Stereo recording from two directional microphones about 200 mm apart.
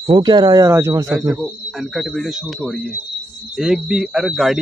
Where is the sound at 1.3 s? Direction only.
Centre (ahead or behind).